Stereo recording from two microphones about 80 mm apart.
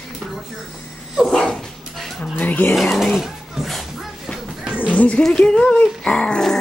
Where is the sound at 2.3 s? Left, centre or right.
Left.